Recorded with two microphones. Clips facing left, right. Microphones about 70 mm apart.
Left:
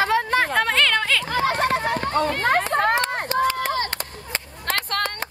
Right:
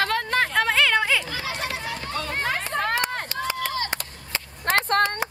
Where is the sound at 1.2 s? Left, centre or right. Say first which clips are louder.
Left 9 dB; left.